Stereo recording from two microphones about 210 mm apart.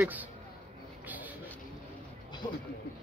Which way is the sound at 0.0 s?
10° right (ahead or behind).